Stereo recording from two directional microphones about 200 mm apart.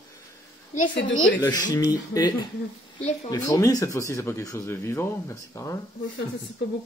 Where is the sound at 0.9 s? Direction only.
70° left (ahead or behind).